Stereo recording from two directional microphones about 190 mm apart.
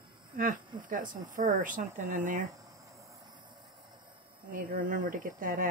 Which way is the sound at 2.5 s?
15° right (ahead or behind).